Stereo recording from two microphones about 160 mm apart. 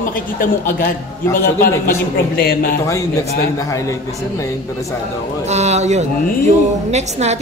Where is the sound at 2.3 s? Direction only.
65° left (ahead or behind).